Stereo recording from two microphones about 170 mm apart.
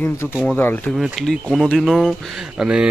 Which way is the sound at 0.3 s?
5° right (ahead or behind).